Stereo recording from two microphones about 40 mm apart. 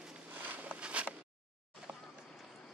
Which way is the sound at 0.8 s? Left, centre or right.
Right.